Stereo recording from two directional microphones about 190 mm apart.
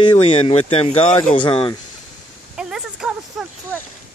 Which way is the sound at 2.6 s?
5° right (ahead or behind).